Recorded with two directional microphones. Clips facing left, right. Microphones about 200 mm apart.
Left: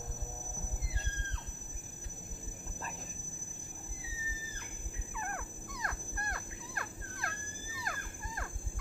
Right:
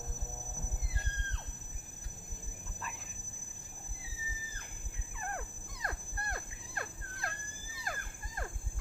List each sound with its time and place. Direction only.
5.3 s cricket: 30° right (ahead or behind)